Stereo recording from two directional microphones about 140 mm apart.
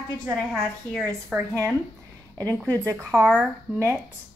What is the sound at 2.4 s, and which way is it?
Speech, 25° right (ahead or behind).